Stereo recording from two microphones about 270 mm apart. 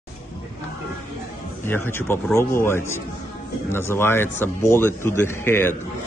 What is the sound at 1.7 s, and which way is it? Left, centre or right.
A man's voice, centre.